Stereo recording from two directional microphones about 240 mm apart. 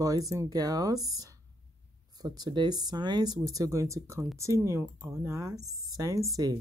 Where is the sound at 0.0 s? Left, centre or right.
Centre.